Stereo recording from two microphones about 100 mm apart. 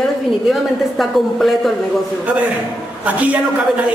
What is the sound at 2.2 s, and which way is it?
A man's voice, 15° right (ahead or behind).